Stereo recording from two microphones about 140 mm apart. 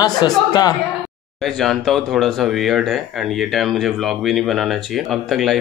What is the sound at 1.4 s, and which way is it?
Speech, centre (ahead or behind).